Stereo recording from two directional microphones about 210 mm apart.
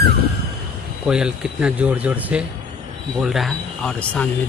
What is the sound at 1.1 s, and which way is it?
Speech, 5° right (ahead or behind).